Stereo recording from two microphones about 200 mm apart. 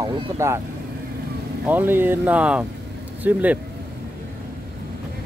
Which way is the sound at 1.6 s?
10° right (ahead or behind).